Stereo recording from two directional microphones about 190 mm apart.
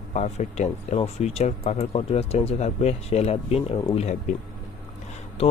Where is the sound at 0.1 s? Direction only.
40° left (ahead or behind).